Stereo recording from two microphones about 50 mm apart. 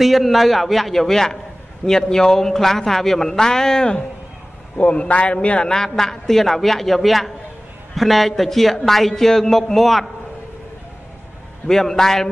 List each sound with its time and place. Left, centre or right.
0.0 s a man's voice: centre
4.7 s a man's voice: left
5.7 s a man's voice: centre
11.6 s a man's voice: centre